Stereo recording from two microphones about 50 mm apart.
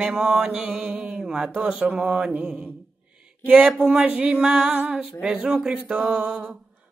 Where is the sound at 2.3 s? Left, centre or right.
Right.